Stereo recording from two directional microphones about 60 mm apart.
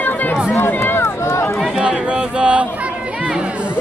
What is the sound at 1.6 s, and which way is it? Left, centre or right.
Chatter, centre.